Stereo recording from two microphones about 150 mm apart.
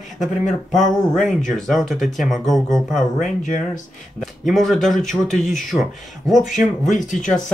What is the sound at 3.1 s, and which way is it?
Speech, 55° left (ahead or behind).